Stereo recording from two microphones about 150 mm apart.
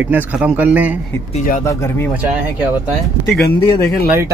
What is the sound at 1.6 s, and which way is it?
Speech, 15° left (ahead or behind).